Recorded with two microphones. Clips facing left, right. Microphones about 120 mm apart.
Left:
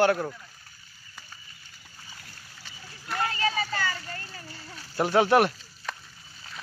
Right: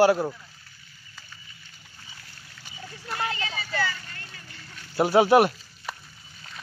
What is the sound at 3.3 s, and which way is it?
Vehicle, 40° left (ahead or behind).